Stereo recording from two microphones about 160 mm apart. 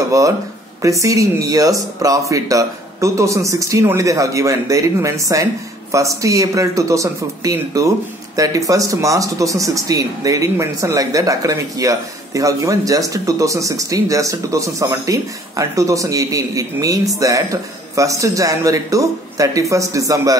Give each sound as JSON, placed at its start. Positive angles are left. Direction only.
{"t": 0.1, "sound": "speech", "side_deg": -20}